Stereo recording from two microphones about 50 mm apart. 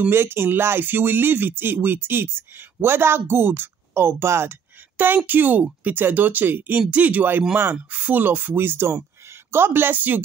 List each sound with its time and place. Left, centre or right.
0.1 s speech: right
4.9 s speech: right